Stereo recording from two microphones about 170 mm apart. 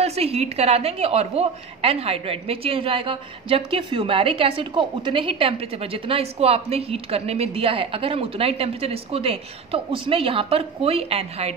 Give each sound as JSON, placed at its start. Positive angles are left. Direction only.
{"t": 0.0, "sound": "a woman's voice", "side_deg": -35}